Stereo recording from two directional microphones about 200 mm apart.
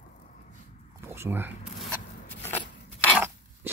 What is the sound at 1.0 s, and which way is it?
Speech, 10° right (ahead or behind).